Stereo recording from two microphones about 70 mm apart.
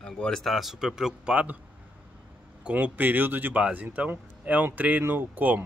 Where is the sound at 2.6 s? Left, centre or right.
Right.